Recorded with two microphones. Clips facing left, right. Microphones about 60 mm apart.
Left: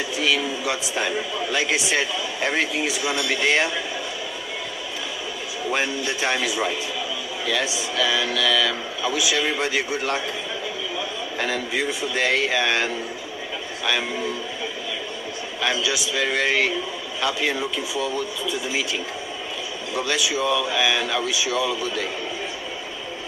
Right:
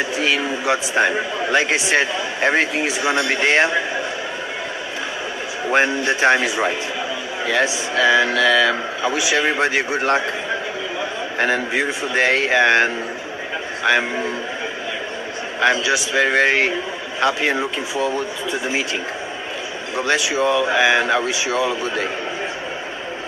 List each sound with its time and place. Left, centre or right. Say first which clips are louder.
0.2 s a man's voice: even; right
5.7 s a man's voice: right 7 dB; right
15.6 s a man's voice: right 7 dB; right
20.0 s speech: right 5 dB; right